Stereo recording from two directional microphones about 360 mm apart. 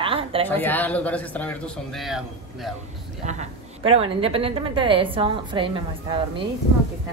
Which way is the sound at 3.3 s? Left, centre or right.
Centre.